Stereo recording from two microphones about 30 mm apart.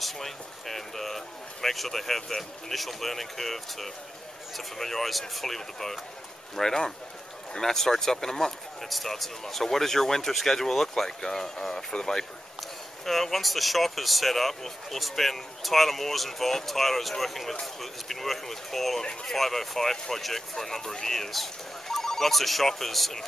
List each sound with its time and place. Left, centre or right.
0.0 s speech: centre
8.8 s speech: centre; by 12.1 s left
13.0 s speech: centre